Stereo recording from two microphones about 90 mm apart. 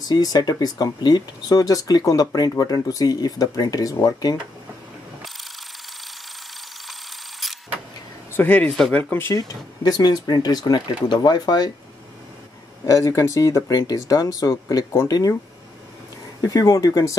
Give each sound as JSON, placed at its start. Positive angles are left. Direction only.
{"t": 0.0, "sound": "speech", "side_deg": 45}
{"t": 6.9, "sound": "a sound", "side_deg": 0}
{"t": 8.3, "sound": "speech", "side_deg": 20}
{"t": 9.3, "sound": "speech", "side_deg": 45}
{"t": 12.8, "sound": "speech", "side_deg": 40}
{"t": 16.3, "sound": "speech", "side_deg": 40}